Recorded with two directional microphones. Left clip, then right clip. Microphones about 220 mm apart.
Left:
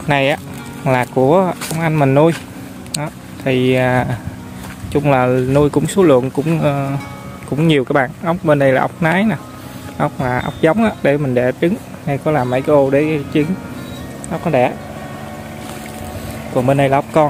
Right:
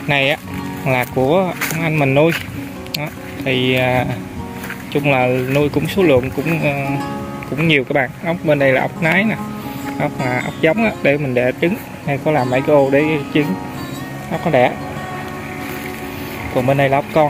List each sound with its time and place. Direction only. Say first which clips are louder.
0.1 s speech: left 1 dB; 15° left (ahead or behind)
3.4 s speech: left 2 dB; 55° left (ahead or behind)
3.8 s speech: left 1 dB; 15° left (ahead or behind)
16.5 s speech: left 1 dB; 15° left (ahead or behind)